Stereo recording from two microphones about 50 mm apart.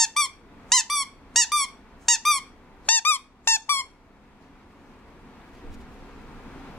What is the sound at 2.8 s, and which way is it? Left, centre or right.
Squeak, left.